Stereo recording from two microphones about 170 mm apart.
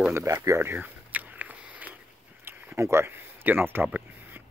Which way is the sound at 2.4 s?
15° right (ahead or behind).